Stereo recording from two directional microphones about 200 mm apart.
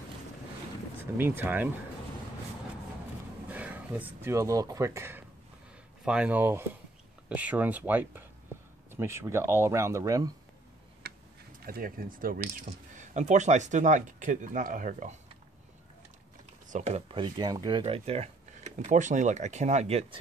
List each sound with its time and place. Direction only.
0.9 s speech: 10° right (ahead or behind)
3.4 s speech: 10° right (ahead or behind)
11.0 s a sound: 55° right (ahead or behind)
11.6 s speech: 45° right (ahead or behind)
16.6 s speech: 35° right (ahead or behind)